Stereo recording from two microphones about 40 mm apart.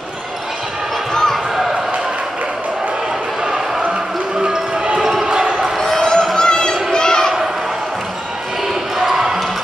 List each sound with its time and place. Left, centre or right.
1.1 s basketball bounce: centre
4.4 s basketball bounce: centre
5.8 s a sound: centre
8.9 s basketball bounce: centre